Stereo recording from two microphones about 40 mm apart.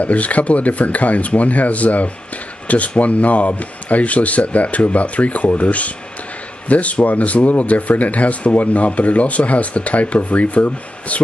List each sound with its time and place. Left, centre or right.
0.0 s speech: left